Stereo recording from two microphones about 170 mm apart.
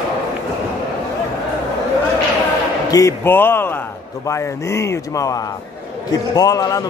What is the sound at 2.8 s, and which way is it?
A man's voice, 20° left (ahead or behind).